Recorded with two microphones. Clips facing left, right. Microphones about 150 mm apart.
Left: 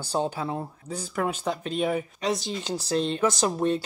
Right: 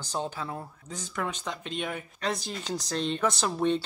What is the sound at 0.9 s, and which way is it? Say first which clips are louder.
Speech: left 5 dB; 35° left (ahead or behind).